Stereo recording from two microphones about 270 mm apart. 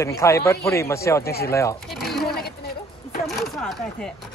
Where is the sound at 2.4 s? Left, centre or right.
Left.